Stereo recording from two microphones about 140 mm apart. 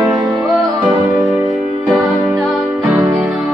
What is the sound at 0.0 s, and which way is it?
Music, centre (ahead or behind).